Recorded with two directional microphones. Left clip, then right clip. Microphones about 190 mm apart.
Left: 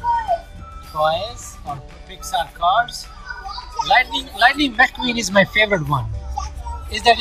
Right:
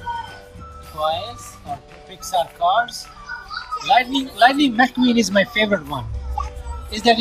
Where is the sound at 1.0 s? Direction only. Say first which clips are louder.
Left 3 dB; 10° right (ahead or behind).